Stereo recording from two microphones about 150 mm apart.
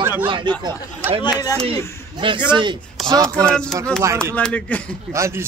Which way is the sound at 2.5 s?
30° right (ahead or behind).